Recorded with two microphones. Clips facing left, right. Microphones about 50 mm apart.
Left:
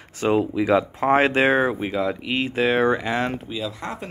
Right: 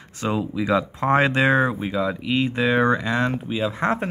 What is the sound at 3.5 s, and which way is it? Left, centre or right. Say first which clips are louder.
Speech: right 7 dB; right.